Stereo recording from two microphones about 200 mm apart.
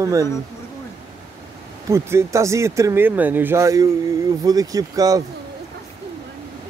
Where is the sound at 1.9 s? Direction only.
15° right (ahead or behind).